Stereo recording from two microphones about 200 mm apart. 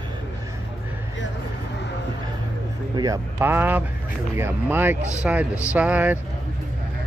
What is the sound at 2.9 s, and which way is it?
Speech, 15° right (ahead or behind).